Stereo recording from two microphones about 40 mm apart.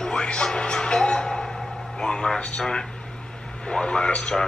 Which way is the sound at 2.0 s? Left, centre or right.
Left.